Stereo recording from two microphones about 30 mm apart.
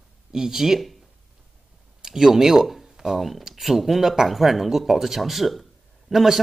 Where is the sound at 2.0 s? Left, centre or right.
Centre.